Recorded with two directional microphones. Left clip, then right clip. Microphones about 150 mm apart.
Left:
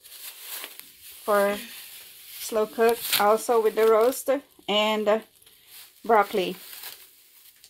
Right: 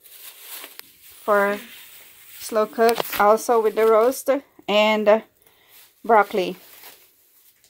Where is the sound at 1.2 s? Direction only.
5° right (ahead or behind).